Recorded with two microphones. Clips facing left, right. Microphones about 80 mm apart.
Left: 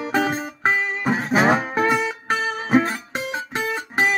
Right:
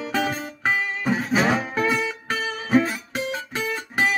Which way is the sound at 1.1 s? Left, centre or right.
Left.